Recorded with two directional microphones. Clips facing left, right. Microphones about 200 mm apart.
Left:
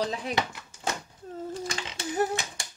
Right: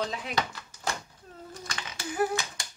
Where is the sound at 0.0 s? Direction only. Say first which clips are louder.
Left 2 dB; 20° left (ahead or behind).